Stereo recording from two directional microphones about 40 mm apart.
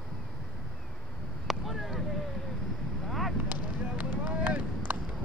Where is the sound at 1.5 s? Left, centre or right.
Centre.